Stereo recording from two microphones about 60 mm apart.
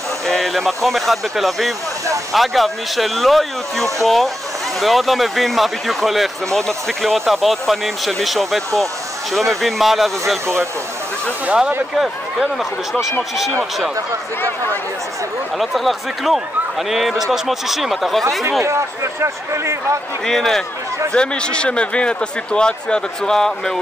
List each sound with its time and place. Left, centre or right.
0.3 s speech: centre
11.9 s speech: centre
15.6 s speech: centre
18.6 s speech: right
20.2 s a man's voice: centre